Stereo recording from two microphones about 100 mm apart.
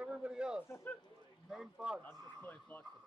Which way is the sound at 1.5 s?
5° right (ahead or behind).